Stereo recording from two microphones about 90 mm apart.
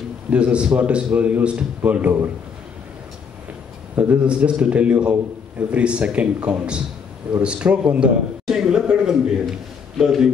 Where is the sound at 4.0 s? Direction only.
15° right (ahead or behind).